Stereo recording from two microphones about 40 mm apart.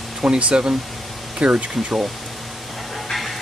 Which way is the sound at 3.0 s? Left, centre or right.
Centre.